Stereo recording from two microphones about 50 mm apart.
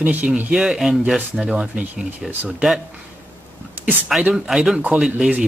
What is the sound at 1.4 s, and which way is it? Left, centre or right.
Speech, right.